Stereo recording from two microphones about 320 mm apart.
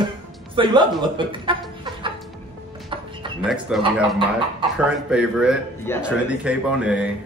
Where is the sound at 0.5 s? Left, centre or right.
Centre.